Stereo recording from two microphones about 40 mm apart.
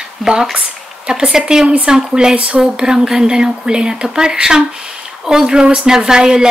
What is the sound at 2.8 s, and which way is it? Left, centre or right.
A woman's voice, centre.